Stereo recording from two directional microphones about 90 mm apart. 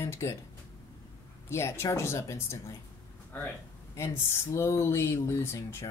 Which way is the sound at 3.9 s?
30° left (ahead or behind).